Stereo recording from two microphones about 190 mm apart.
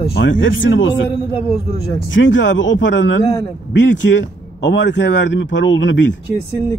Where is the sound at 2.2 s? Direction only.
75° left (ahead or behind).